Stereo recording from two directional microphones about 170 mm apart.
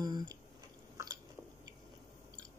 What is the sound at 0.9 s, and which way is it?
Chewing, 20° right (ahead or behind).